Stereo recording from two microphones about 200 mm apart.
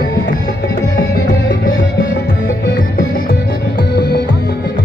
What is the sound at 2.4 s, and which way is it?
Music, 40° left (ahead or behind).